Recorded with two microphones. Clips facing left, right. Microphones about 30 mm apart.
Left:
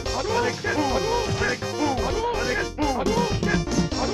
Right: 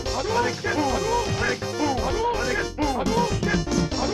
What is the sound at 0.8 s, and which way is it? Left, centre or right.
Speech, left.